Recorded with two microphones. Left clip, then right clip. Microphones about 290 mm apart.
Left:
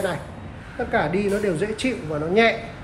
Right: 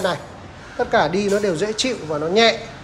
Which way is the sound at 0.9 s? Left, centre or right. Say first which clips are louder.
Right 4 dB; centre.